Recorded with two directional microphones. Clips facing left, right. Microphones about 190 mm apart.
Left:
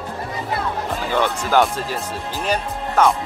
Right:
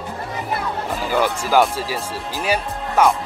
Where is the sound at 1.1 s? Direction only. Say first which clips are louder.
Right 1 dB; 5° right (ahead or behind).